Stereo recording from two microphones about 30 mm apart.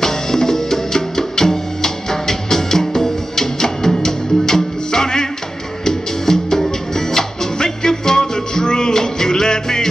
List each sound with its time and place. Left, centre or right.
0.0 s music: centre